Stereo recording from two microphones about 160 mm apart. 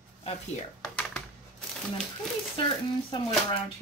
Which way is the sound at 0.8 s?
5° left (ahead or behind).